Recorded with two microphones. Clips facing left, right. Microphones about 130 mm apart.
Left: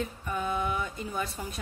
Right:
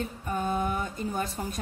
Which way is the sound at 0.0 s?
40° right (ahead or behind).